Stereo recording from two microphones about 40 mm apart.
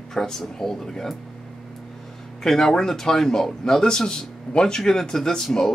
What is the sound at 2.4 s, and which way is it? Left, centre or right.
Speech, centre.